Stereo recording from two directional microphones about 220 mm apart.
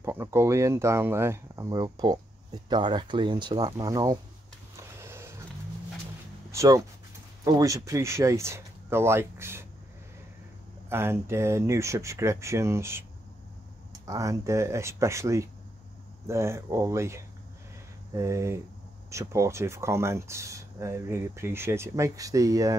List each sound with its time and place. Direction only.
0.0 s speech: 10° right (ahead or behind)
4.7 s skateboard: 10° right (ahead or behind)
6.5 s speech: 15° right (ahead or behind)
10.9 s speech: 10° right (ahead or behind)
14.0 s speech: 15° right (ahead or behind)